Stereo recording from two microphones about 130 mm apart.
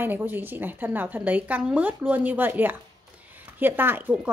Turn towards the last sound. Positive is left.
turn(degrees=-10)  # may be behind; listen again after turning